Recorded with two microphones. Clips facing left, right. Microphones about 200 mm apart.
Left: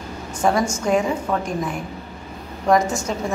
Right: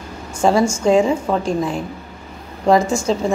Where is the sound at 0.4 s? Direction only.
25° right (ahead or behind).